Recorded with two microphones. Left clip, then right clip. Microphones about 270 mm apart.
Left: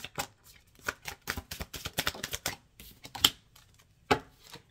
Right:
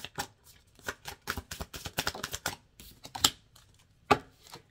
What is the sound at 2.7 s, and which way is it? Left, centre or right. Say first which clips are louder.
Computer keyboard: right 1 dB; centre.